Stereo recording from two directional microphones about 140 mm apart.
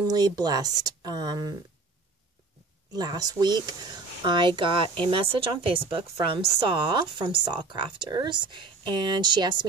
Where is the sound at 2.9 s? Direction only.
30° right (ahead or behind).